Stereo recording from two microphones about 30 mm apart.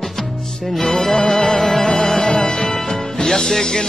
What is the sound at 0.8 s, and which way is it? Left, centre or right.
Music, centre.